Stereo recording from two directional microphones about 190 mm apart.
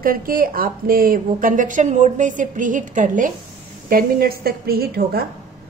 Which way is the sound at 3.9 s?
55° right (ahead or behind).